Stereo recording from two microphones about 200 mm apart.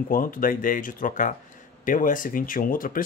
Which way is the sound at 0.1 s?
45° left (ahead or behind).